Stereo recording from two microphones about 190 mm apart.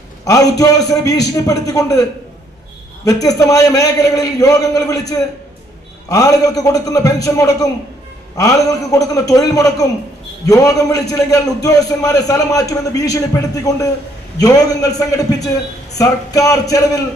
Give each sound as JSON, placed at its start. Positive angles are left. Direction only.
{"t": 0.2, "sound": "a man's voice", "side_deg": 20}
{"t": 3.1, "sound": "a man's voice", "side_deg": 20}
{"t": 14.4, "sound": "a man's voice", "side_deg": 20}